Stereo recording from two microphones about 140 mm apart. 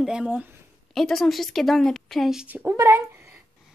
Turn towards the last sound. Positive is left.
turn(degrees=-20)  # may be behind; listen again after turning